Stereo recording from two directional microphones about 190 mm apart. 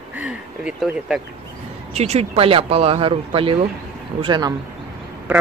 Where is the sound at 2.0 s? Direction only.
35° right (ahead or behind).